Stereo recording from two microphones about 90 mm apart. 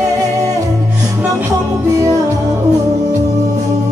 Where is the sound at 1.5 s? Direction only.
40° right (ahead or behind).